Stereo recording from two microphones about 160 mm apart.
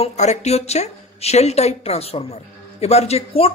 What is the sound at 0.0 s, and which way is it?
Speech, 45° left (ahead or behind).